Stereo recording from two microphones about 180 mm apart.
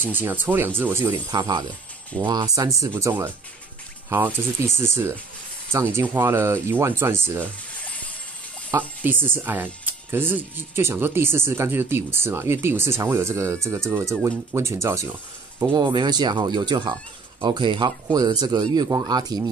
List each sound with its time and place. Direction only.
0.0 s speech: 10° right (ahead or behind)
1.3 s speech: 25° right (ahead or behind)
4.6 s speech: 15° right (ahead or behind)
7.8 s music: 10° left (ahead or behind)
8.7 s speech: 10° right (ahead or behind)